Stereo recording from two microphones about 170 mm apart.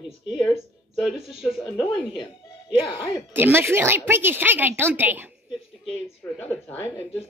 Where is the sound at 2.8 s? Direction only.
35° left (ahead or behind).